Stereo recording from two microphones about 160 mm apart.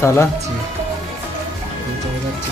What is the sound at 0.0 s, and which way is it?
Speech, 15° left (ahead or behind).